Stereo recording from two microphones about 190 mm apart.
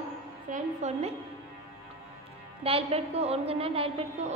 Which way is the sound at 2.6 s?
30° right (ahead or behind).